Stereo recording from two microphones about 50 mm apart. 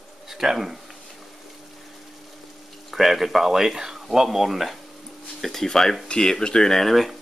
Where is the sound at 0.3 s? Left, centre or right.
Centre.